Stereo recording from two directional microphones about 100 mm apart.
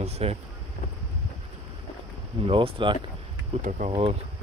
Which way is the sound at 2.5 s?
65° right (ahead or behind).